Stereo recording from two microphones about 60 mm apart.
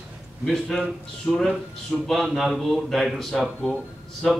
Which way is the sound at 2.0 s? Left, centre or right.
Centre.